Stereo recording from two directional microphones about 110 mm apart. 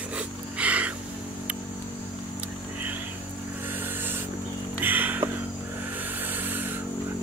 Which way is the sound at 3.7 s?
20° right (ahead or behind).